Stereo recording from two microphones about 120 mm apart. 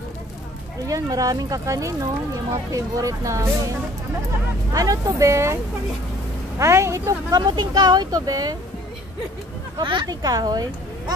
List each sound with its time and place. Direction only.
0.8 s speech: 30° right (ahead or behind)
4.7 s speech: 30° right (ahead or behind)
6.6 s speech: 25° right (ahead or behind)
9.8 s speech: 40° right (ahead or behind)